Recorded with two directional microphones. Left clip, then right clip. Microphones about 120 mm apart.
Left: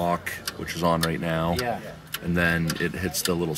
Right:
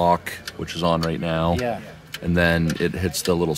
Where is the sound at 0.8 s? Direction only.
15° right (ahead or behind).